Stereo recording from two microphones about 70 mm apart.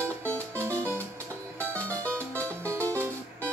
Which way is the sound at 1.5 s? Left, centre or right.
Left.